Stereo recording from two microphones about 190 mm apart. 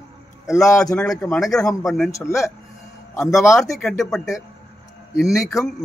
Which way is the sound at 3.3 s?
Centre (ahead or behind).